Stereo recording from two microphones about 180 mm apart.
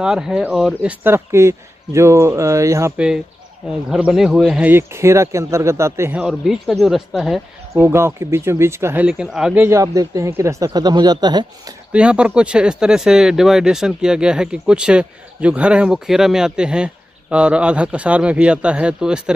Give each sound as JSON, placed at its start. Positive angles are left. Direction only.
{"t": 0.0, "sound": "speech", "side_deg": -5}
{"t": 1.0, "sound": "speech", "side_deg": -15}
{"t": 3.9, "sound": "speech", "side_deg": -5}
{"t": 6.2, "sound": "speech", "side_deg": 0}
{"t": 7.7, "sound": "speech", "side_deg": -15}
{"t": 11.9, "sound": "speech", "side_deg": -5}